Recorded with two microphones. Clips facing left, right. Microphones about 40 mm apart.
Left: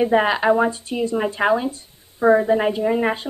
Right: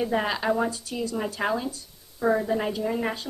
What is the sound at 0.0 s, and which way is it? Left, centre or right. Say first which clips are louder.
A woman's voice: left 8 dB; left.